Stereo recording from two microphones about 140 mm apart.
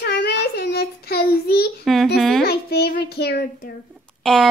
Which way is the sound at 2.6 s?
90° left.